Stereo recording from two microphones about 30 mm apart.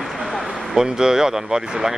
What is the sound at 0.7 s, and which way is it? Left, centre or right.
Speech, centre.